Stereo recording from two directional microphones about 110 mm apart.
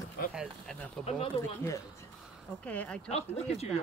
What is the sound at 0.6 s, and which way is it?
Speech, 10° left (ahead or behind).